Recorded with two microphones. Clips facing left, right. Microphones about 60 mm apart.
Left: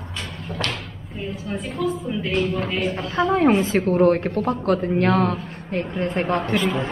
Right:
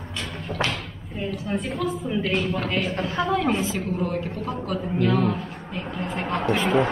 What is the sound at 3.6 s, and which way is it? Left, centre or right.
A woman's voice, left.